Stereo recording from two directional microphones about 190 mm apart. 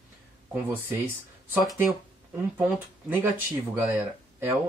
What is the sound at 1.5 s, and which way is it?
Speech, centre (ahead or behind).